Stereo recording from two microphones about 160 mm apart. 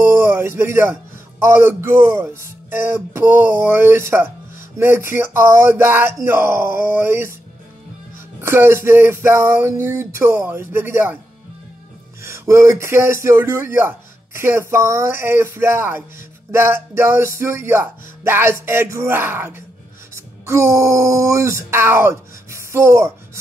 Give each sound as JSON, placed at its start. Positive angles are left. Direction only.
{"t": 0.0, "sound": "music", "side_deg": -15}
{"t": 1.4, "sound": "speech", "side_deg": -15}
{"t": 8.4, "sound": "speech", "side_deg": -15}
{"t": 12.2, "sound": "speech", "side_deg": -15}